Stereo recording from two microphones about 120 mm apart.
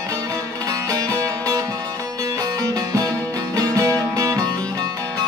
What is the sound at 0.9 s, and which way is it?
Music, 30° right (ahead or behind).